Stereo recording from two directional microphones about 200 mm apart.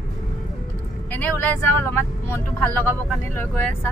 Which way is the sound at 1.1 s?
10° left (ahead or behind).